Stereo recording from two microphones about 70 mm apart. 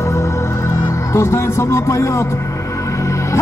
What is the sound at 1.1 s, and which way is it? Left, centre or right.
Speech, left.